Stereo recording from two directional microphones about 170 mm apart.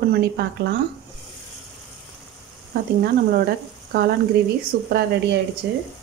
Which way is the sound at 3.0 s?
65° right (ahead or behind).